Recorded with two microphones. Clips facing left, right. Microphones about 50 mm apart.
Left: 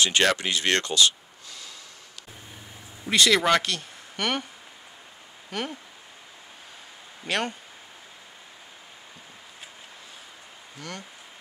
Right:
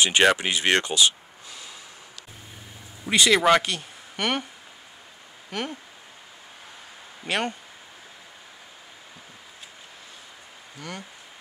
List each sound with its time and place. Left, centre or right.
0.0 s speech: centre
3.1 s speech: centre
5.5 s speech: centre
7.2 s speech: centre
10.8 s speech: centre